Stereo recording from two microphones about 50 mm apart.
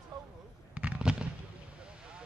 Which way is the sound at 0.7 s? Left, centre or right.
Right.